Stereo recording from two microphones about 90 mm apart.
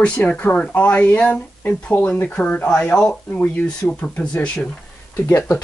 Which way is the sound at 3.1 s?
25° left (ahead or behind).